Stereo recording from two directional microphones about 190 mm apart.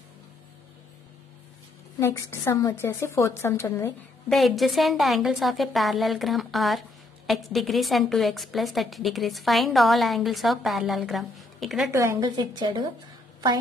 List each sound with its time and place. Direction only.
2.0 s a woman's voice: 15° left (ahead or behind)
4.3 s a woman's voice: centre (ahead or behind)
12.0 s a woman's voice: 20° right (ahead or behind)